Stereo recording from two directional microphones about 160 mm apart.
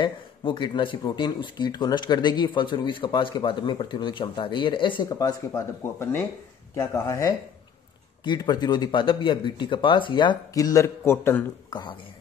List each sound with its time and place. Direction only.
0.0 s speech: 30° left (ahead or behind)
5.5 s speech: 15° left (ahead or behind)